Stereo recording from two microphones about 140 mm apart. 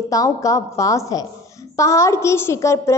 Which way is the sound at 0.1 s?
25° left (ahead or behind).